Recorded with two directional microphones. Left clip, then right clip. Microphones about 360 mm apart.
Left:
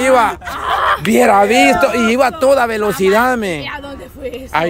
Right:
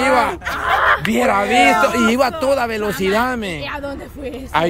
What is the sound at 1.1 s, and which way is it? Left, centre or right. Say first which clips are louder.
Speech: left 5 dB; centre.